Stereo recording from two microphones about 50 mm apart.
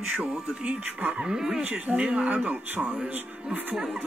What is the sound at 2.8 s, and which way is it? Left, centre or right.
Speech, centre.